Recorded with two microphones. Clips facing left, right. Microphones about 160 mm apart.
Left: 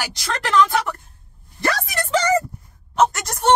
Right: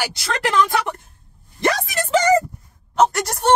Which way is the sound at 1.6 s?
20° right (ahead or behind).